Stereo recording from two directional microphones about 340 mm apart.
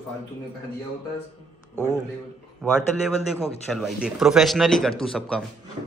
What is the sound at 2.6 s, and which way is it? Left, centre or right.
Speech, centre.